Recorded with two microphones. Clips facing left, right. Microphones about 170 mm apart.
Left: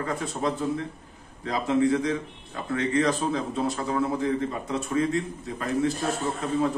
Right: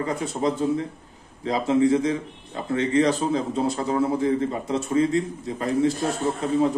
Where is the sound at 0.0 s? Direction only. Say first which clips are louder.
Right 3 dB; 25° right (ahead or behind).